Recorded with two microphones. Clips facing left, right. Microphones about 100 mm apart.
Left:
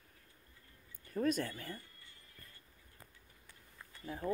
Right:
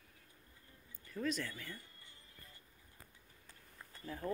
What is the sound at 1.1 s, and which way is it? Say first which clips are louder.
Speech: left 5 dB; 45° left (ahead or behind).